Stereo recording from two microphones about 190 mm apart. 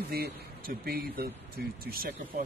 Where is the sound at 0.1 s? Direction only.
50° right (ahead or behind).